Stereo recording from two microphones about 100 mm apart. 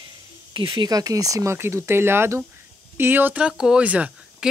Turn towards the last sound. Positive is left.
turn(degrees=-10)  # may be behind; listen again after turning